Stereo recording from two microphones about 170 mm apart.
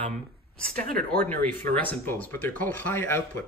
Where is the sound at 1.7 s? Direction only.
10° left (ahead or behind).